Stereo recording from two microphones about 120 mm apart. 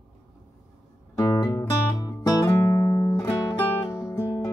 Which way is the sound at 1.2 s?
35° left (ahead or behind).